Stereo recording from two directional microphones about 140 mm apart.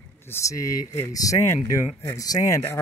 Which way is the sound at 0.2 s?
20° left (ahead or behind).